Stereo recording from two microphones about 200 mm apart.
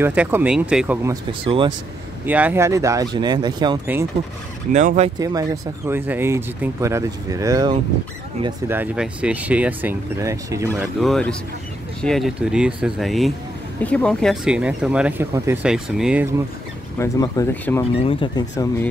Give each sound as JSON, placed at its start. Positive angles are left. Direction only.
{"t": 0.0, "sound": "speech", "side_deg": -10}
{"t": 1.4, "sound": "speech", "side_deg": -25}
{"t": 2.2, "sound": "speech", "side_deg": -10}
{"t": 4.7, "sound": "speech", "side_deg": -35}
{"t": 5.2, "sound": "speech", "side_deg": -15}
{"t": 8.6, "sound": "speech", "side_deg": -5}
{"t": 11.0, "sound": "speech", "side_deg": 5}
{"t": 17.0, "sound": "speech", "side_deg": 15}